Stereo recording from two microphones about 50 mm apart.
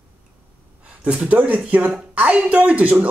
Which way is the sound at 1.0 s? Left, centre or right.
Right.